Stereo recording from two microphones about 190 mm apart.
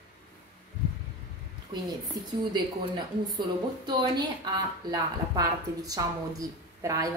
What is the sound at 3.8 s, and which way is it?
Speech, 20° right (ahead or behind).